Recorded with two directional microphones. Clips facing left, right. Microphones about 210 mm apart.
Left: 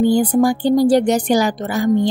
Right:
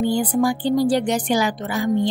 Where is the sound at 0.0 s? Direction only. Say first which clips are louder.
Left 5 dB; 45° left (ahead or behind).